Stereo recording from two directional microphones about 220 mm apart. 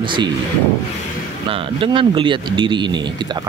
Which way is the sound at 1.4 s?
25° right (ahead or behind).